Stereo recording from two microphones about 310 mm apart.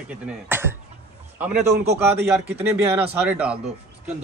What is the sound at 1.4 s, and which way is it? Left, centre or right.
A man's voice, centre.